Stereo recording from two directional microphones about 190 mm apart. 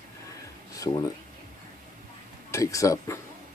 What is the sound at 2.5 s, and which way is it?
Speech, 15° left (ahead or behind).